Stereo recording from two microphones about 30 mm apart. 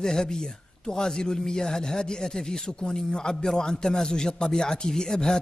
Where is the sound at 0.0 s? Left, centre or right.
Left.